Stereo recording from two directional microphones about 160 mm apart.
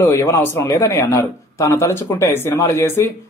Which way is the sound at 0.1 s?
20° left (ahead or behind).